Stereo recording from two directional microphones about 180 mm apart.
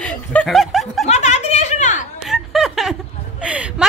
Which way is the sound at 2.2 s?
Centre (ahead or behind).